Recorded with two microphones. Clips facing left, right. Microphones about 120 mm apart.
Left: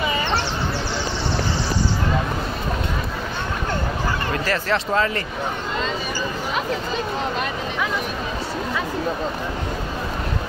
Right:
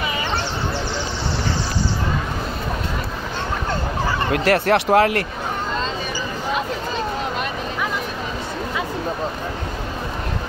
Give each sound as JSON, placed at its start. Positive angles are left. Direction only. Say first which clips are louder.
{"t": 4.3, "sound": "speech", "louder": "right 8 dB", "side_deg": -70}